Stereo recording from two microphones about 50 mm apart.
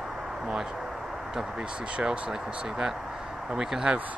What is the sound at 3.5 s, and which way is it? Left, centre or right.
Speech, centre.